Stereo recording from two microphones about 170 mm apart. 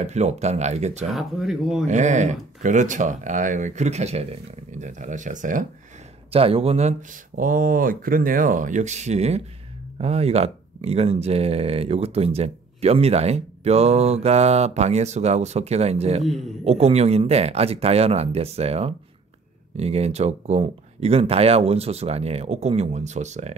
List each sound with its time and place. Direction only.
0.0 s speech: 40° right (ahead or behind)
1.1 s speech: centre (ahead or behind)
1.9 s speech: 45° right (ahead or behind)
6.3 s speech: 35° right (ahead or behind)